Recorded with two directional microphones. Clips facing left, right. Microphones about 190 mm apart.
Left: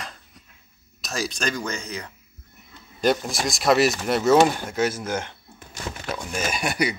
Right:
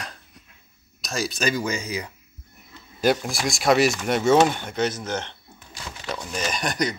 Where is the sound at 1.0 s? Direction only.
Centre (ahead or behind).